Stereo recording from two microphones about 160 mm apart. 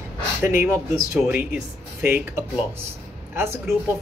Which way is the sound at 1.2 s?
10° right (ahead or behind).